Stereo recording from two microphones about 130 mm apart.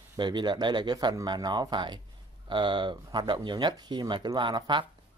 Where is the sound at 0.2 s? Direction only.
35° right (ahead or behind).